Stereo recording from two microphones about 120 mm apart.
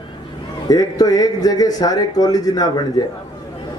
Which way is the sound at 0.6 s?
30° left (ahead or behind).